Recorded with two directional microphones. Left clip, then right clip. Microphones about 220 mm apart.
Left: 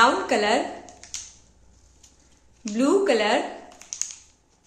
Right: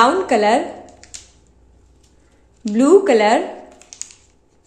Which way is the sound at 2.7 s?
25° right (ahead or behind).